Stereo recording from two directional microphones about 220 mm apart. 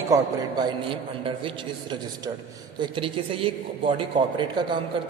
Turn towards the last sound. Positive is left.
turn(degrees=-20)  # may be behind; listen again after turning